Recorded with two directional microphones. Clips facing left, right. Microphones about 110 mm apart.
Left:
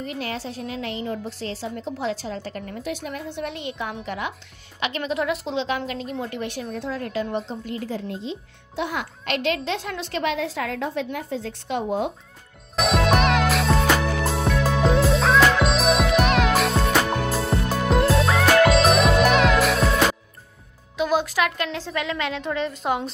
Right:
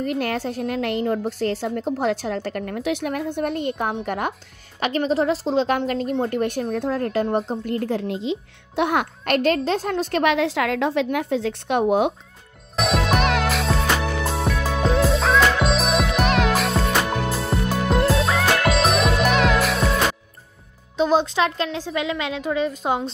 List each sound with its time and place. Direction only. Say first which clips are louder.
0.0 s a woman's voice: right 6 dB; 55° right (ahead or behind)
8.1 s a child's voice: right 6 dB; 90° right; by 10.2 s 40° right (ahead or behind)
10.2 s a woman's voice: right 5 dB; 70° right (ahead or behind)
12.7 s music: left 1 dB; centre (ahead or behind)
21.0 s a woman's voice: right 3 dB; 25° right (ahead or behind)